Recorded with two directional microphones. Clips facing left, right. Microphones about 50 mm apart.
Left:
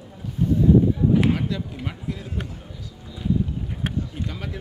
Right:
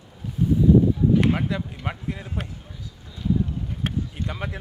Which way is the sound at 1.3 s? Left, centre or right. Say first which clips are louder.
Even; right.